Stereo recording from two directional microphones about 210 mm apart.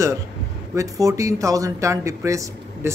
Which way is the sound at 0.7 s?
15° right (ahead or behind).